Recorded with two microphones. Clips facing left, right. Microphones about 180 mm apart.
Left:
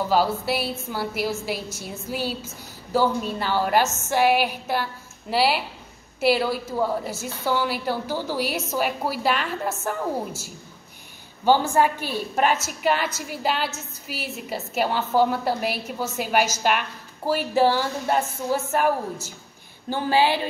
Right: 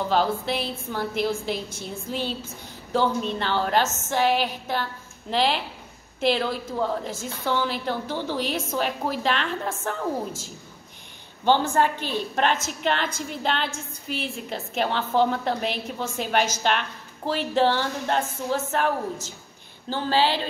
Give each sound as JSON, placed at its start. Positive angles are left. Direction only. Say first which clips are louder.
{"t": 0.1, "sound": "a woman's voice", "louder": "left 2 dB", "side_deg": 5}